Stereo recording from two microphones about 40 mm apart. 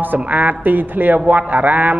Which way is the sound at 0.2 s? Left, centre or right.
Right.